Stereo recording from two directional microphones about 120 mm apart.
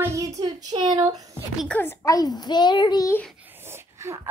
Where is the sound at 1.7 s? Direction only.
15° left (ahead or behind).